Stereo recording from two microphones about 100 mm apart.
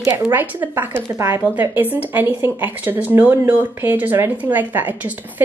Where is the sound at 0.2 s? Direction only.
20° right (ahead or behind).